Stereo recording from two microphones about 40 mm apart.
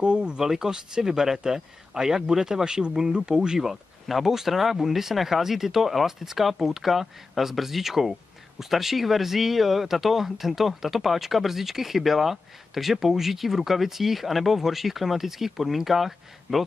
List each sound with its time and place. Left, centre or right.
0.0 s speech: right
0.4 s speech: centre
3.5 s speech: centre